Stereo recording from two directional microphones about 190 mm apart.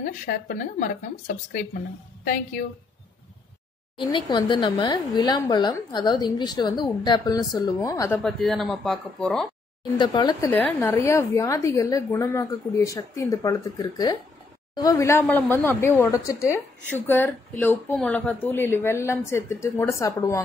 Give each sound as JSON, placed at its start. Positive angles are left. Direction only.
{"t": 0.0, "sound": "speech", "side_deg": 50}
{"t": 4.1, "sound": "a woman's voice", "side_deg": 25}
{"t": 8.2, "sound": "speech", "side_deg": 5}
{"t": 9.9, "sound": "a woman's voice", "side_deg": 25}
{"t": 10.5, "sound": "speech", "side_deg": 10}